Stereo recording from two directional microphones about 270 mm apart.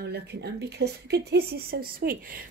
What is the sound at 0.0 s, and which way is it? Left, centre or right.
A woman's voice, right.